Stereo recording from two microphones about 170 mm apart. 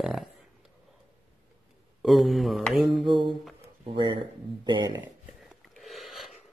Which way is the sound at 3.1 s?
30° right (ahead or behind).